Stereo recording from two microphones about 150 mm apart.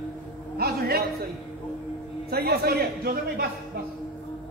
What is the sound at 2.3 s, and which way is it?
A man's voice, 90° right.